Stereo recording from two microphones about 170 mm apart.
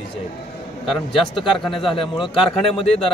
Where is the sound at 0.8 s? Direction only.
Centre (ahead or behind).